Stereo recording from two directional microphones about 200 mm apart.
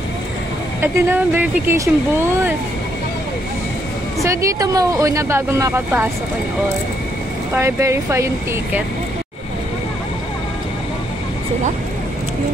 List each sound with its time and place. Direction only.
0.7 s speech: 10° right (ahead or behind)
4.2 s speech: 15° right (ahead or behind)
7.5 s speech: 15° right (ahead or behind)